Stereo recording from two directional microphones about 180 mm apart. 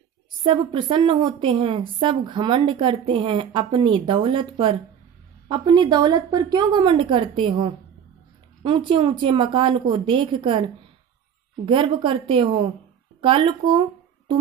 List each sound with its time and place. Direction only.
0.4 s a woman's voice: 30° right (ahead or behind)
11.6 s a woman's voice: 30° right (ahead or behind)